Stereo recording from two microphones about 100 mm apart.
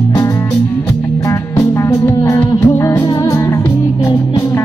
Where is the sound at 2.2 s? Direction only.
30° left (ahead or behind).